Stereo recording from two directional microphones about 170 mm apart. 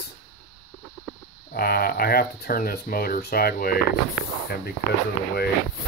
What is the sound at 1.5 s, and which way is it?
Speech, 60° left (ahead or behind).